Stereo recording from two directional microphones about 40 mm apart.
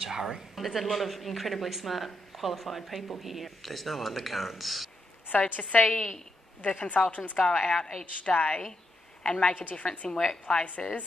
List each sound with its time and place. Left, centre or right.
0.0 s speech: centre
5.4 s a woman's voice: left
5.9 s a woman's voice: centre
6.8 s a woman's voice: left
7.3 s a woman's voice: left
10.5 s a woman's voice: left